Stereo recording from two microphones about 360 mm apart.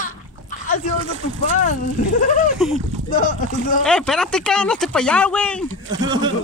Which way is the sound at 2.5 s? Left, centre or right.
Centre.